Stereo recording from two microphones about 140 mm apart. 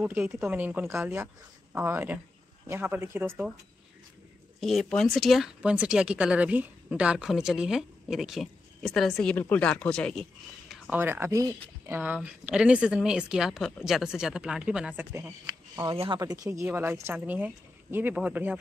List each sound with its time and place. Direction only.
0.0 s speech: 10° right (ahead or behind)
4.6 s speech: centre (ahead or behind)
10.7 s speech: 15° right (ahead or behind)
15.9 s speech: 35° right (ahead or behind)
16.2 s speech: 25° right (ahead or behind)